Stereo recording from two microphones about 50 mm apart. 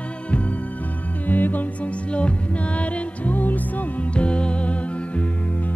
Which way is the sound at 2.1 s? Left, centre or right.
Left.